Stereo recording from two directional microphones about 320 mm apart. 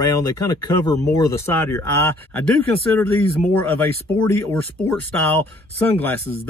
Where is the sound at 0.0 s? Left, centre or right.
Centre.